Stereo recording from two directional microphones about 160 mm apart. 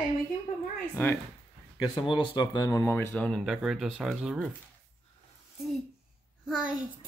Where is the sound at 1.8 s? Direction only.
30° left (ahead or behind); by 3.3 s 15° left (ahead or behind).